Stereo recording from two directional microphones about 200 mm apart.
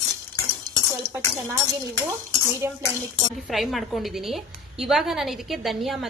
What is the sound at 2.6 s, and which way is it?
Speech, 10° right (ahead or behind).